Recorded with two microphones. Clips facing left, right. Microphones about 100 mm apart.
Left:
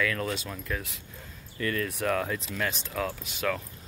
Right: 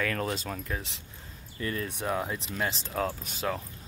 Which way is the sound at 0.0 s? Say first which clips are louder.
Left 1 dB; 35° right (ahead or behind).